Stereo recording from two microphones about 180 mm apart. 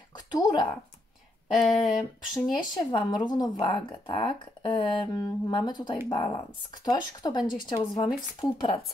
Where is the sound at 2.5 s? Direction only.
25° left (ahead or behind).